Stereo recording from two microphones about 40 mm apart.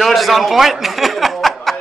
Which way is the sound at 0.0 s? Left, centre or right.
Centre.